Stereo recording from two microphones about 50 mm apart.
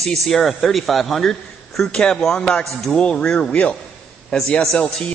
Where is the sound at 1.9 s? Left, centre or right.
Centre.